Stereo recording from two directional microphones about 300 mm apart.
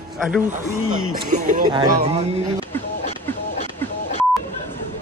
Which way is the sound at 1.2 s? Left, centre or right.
Right.